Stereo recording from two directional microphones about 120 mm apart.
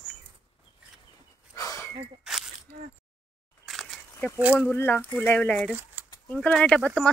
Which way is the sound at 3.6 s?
Centre (ahead or behind).